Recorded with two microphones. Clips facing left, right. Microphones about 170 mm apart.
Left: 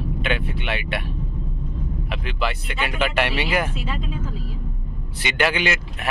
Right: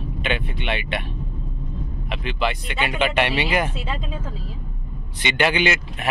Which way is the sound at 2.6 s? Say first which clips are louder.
Right 2 dB; centre (ahead or behind).